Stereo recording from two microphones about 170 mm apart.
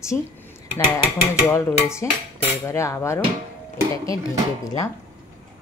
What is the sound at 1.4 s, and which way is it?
Dishes, 15° left (ahead or behind).